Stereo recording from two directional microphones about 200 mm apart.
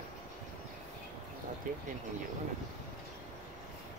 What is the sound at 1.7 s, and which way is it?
Speech, 40° right (ahead or behind).